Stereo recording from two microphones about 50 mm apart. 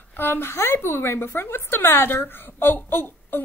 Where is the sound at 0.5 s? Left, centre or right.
Left.